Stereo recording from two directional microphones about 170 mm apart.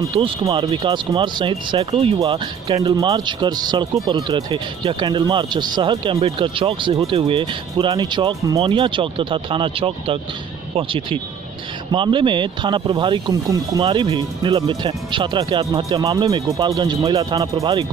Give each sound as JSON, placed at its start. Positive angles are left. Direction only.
{"t": 0.1, "sound": "speech", "side_deg": -30}
{"t": 2.1, "sound": "speech", "side_deg": -25}